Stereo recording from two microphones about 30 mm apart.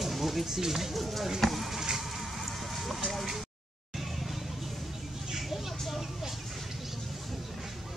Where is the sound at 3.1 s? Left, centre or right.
Centre.